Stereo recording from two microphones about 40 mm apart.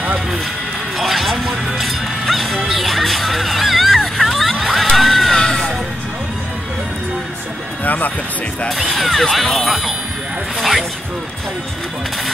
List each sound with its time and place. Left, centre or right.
0.9 s music: centre
5.4 s music: centre
7.8 s a sound: left
8.9 s vehicle: centre
9.3 s speech: centre
10.6 s a sound: centre